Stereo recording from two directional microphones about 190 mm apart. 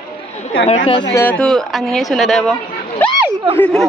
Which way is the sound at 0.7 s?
30° left (ahead or behind).